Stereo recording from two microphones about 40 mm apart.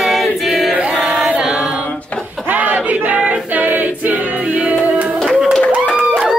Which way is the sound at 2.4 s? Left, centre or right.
Right.